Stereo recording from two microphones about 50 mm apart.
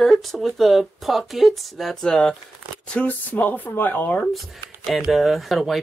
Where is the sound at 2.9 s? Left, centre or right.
Left.